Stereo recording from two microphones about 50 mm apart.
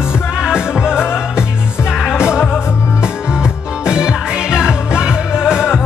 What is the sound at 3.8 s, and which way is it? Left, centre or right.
Music, centre.